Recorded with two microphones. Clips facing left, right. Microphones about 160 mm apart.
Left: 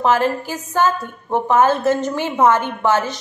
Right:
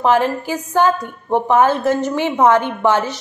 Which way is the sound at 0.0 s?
15° right (ahead or behind).